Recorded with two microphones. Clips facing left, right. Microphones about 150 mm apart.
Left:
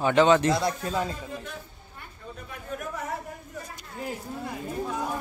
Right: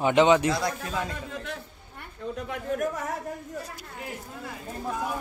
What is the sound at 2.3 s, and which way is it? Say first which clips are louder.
Speech: right 8 dB; 75° right (ahead or behind).